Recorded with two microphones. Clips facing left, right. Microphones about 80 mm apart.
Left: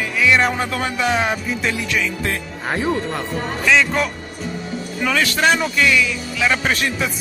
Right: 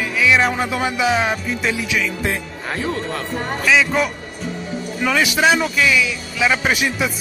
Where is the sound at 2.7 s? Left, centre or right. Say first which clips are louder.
Left 2 dB; left.